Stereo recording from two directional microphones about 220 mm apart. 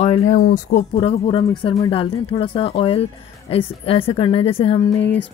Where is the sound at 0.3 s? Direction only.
35° left (ahead or behind).